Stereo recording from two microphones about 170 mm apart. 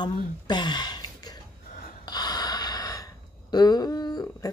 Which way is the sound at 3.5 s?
25° left (ahead or behind).